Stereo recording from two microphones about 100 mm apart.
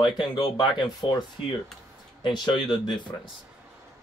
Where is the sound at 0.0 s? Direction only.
50° left (ahead or behind).